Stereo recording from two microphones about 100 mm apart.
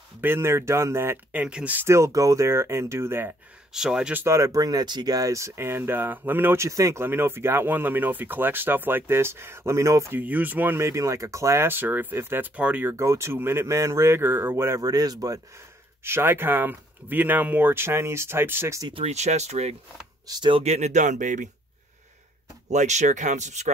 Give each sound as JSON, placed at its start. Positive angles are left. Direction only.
{"t": 0.2, "sound": "speech", "side_deg": -25}
{"t": 1.3, "sound": "speech", "side_deg": -15}
{"t": 1.9, "sound": "speech", "side_deg": -30}
{"t": 3.7, "sound": "speech", "side_deg": -5}
{"t": 4.2, "sound": "speech", "side_deg": -30}
{"t": 10.2, "sound": "speech", "side_deg": -15}
{"t": 12.9, "sound": "speech", "side_deg": -30}
{"t": 16.0, "sound": "speech", "side_deg": -25}
{"t": 18.9, "sound": "speech", "side_deg": -90}
{"t": 20.2, "sound": "speech", "side_deg": -45}
{"t": 20.5, "sound": "speech", "side_deg": -90}